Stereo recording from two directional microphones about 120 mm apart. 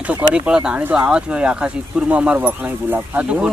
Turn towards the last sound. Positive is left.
turn(degrees=-10)  # may be behind; listen again after turning